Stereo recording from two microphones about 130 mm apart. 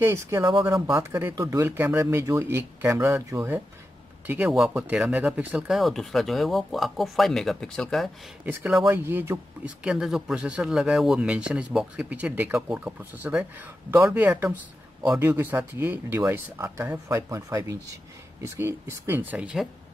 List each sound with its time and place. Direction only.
0.0 s speech: 25° right (ahead or behind)
4.5 s a man's voice: 5° right (ahead or behind)
8.9 s a man's voice: 15° right (ahead or behind)
9.8 s a man's voice: 5° right (ahead or behind)